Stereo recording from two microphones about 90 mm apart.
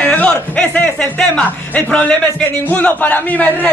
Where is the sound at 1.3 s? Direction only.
10° left (ahead or behind).